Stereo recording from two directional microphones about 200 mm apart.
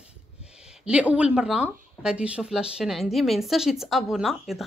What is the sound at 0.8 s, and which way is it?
Speech, 5° right (ahead or behind).